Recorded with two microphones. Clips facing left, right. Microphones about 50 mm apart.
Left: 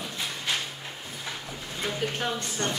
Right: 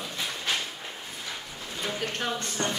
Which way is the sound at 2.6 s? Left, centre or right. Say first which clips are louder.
Even; centre.